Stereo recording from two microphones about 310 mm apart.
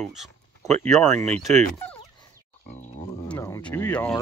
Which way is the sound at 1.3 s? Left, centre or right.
Right.